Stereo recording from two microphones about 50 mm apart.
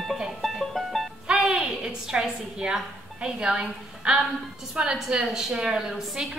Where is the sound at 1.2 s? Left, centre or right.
Centre.